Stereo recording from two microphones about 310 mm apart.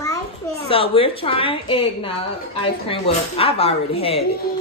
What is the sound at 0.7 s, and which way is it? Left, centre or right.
A woman's voice, centre.